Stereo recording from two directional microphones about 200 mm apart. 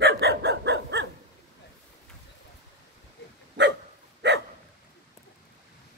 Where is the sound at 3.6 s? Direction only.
60° right (ahead or behind).